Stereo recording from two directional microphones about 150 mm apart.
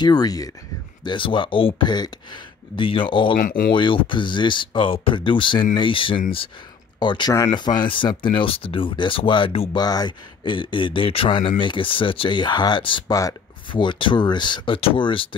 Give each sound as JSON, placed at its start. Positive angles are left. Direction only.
{"t": 0.0, "sound": "speech", "side_deg": 25}
{"t": 3.3, "sound": "speech", "side_deg": 70}
{"t": 3.7, "sound": "speech", "side_deg": 35}